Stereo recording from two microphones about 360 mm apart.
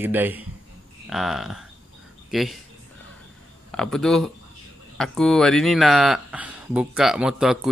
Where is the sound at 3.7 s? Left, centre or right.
Centre.